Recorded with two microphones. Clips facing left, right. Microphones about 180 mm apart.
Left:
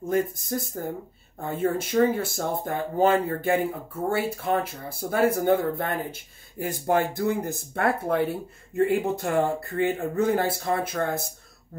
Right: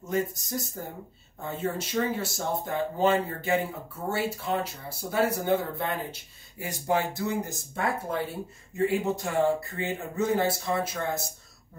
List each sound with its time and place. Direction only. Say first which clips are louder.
0.0 s speech: left 4 dB; 55° left (ahead or behind)